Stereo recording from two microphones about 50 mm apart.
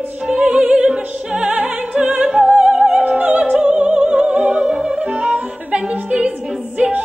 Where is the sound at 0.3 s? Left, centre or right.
Right.